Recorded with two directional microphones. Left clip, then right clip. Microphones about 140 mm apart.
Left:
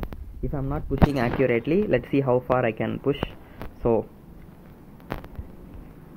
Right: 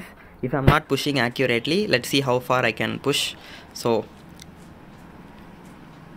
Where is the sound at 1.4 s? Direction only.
15° right (ahead or behind).